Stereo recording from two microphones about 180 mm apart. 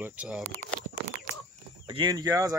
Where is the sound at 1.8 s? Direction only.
25° right (ahead or behind).